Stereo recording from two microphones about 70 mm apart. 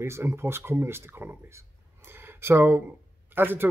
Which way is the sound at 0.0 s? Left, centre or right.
Right.